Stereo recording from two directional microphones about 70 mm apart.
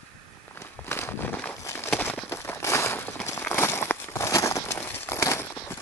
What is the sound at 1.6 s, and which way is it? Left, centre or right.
Horse, left.